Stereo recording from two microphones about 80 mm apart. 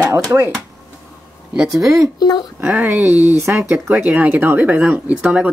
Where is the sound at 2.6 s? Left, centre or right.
Centre.